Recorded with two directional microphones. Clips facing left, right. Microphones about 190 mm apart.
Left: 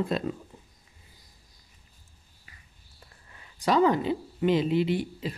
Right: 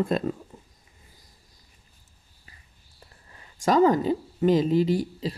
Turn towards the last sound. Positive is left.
turn(degrees=-35)  # may be behind; listen again after turning